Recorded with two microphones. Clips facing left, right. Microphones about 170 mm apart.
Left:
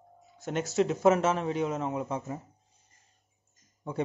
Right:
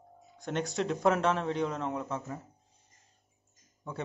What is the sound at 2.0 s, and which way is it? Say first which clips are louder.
Speech: left 3 dB; 20° left (ahead or behind).